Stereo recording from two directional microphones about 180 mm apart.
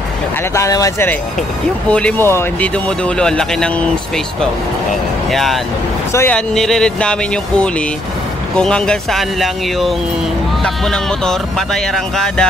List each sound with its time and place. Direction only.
0.6 s speech: 20° left (ahead or behind)
5.3 s speech: centre (ahead or behind)